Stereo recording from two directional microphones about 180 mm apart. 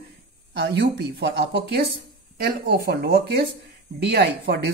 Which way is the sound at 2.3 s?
60° right (ahead or behind).